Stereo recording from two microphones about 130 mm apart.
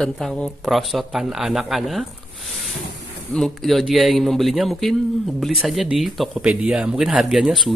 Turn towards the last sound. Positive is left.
turn(degrees=0)  # may be behind; listen again after turning